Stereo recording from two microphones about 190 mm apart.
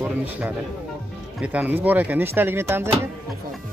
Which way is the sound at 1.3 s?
5° right (ahead or behind).